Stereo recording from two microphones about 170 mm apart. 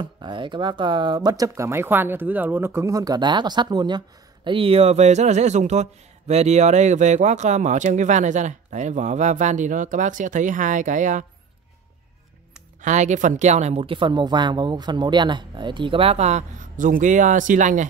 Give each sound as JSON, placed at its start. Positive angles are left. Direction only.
{"t": 0.0, "sound": "speech", "side_deg": -30}
{"t": 12.8, "sound": "a woman's voice", "side_deg": -45}